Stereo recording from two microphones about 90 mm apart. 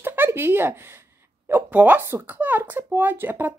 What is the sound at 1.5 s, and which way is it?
A woman's voice, 20° right (ahead or behind).